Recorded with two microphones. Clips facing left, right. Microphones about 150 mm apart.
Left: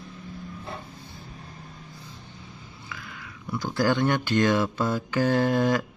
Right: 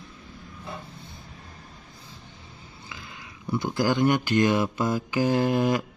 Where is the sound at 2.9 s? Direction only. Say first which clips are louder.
Left 2 dB; 25° right (ahead or behind).